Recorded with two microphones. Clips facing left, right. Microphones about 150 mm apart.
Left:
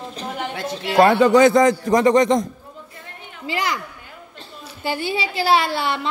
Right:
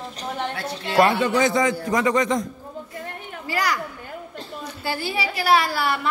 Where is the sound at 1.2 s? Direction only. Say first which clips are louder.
Left 8 dB; 80° left.